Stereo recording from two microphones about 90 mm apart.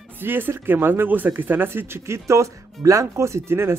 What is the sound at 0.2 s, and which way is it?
Speech, 20° right (ahead or behind).